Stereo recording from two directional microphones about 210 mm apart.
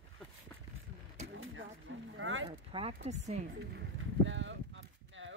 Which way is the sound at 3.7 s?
60° right (ahead or behind).